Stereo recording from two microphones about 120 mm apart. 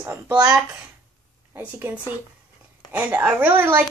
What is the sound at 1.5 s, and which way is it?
A woman's voice, 15° right (ahead or behind).